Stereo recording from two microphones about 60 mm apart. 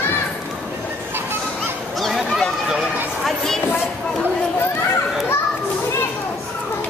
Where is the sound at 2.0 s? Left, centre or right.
Centre.